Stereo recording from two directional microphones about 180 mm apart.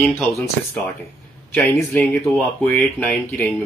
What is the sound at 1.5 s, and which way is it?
Speech, 15° left (ahead or behind).